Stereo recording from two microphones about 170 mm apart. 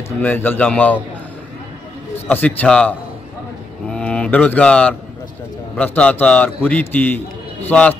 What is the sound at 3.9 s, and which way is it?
Mantra, 5° left (ahead or behind).